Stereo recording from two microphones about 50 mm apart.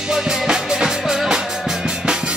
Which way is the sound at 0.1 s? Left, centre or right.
Centre.